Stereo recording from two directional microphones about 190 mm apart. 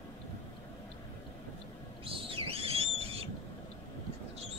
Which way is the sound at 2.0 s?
30° right (ahead or behind).